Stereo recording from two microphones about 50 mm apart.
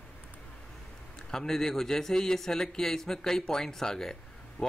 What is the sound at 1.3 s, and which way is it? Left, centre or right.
A man's voice, centre.